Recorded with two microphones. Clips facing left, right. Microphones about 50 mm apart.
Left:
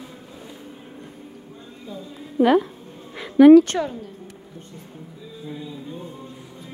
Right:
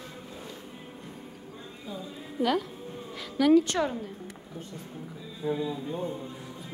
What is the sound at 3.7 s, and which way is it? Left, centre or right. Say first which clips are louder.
Speech: left 3 dB; centre.